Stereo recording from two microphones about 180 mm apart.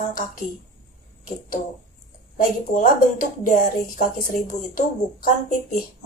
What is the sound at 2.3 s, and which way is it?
Speech, 50° left (ahead or behind).